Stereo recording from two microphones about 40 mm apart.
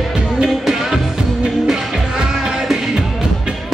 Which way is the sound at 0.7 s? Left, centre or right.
Centre.